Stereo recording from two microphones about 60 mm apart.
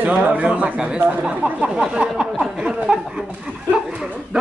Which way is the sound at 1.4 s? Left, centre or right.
Centre.